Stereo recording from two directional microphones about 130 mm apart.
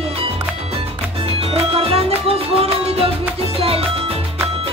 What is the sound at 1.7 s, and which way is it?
Music, 50° right (ahead or behind).